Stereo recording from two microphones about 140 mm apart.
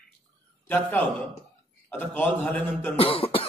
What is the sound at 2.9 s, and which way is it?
Cough, 45° left (ahead or behind).